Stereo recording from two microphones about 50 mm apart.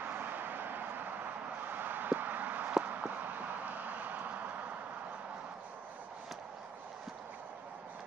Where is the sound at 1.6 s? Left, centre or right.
Right.